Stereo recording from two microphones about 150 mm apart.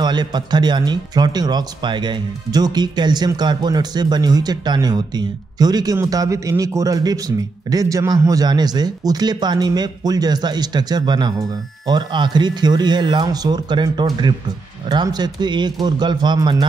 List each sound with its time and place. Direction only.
0.0 s speech: 30° right (ahead or behind)